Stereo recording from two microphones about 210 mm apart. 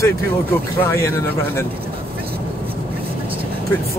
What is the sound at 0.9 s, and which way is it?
Speech, 15° left (ahead or behind).